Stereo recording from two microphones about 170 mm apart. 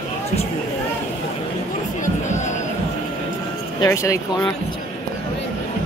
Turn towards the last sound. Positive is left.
turn(degrees=20)  # may be behind; listen again after turning